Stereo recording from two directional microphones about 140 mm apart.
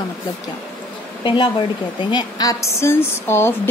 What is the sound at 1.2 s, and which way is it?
Speech, 35° left (ahead or behind).